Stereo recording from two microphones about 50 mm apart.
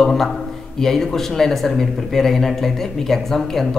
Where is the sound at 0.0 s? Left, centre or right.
Centre.